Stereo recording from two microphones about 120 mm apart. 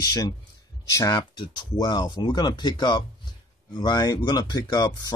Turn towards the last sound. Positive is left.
turn(degrees=35)  # may be behind; listen again after turning